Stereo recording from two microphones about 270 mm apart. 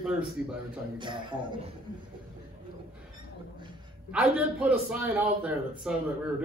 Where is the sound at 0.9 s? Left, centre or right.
Centre.